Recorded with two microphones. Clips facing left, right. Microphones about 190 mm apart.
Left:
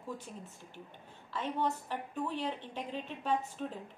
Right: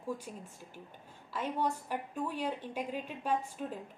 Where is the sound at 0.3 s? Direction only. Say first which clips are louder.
Right 1 dB; 5° right (ahead or behind).